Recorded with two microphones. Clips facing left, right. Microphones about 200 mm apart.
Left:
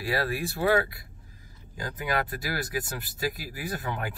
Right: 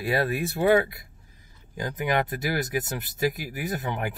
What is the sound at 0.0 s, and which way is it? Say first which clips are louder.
Speech: right 3 dB; 20° right (ahead or behind).